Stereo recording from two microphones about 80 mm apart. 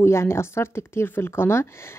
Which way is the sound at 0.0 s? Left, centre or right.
Left.